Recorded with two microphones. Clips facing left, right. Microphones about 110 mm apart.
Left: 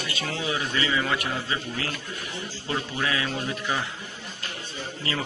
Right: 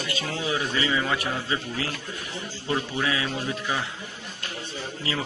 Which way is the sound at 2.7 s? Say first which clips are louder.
Right 1 dB; 15° right (ahead or behind).